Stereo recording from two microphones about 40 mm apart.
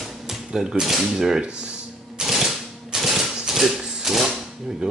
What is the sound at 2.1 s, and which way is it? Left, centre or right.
Typewriter, centre.